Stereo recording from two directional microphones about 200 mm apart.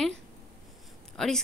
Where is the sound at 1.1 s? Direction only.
Centre (ahead or behind).